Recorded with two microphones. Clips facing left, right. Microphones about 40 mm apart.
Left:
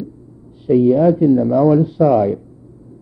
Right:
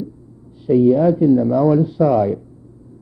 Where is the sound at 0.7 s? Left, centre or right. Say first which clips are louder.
Even; left.